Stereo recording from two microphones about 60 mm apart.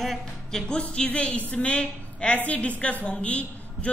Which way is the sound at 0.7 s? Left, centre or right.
Centre.